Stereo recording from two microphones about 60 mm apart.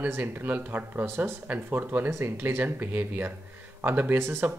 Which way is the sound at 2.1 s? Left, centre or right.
Right.